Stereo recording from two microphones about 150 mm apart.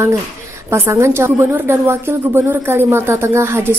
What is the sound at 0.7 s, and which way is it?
A woman's voice, 20° right (ahead or behind).